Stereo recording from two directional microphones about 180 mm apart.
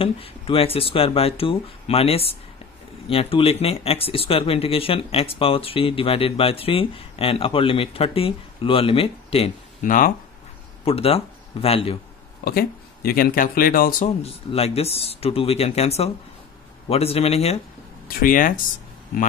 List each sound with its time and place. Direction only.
0.0 s speech: 30° left (ahead or behind)
9.8 s speech: 50° left (ahead or behind)
10.9 s speech: 30° left (ahead or behind)
12.4 s speech: 55° left (ahead or behind)
14.0 s speech: 35° left (ahead or behind)
18.0 s speech: 50° left (ahead or behind)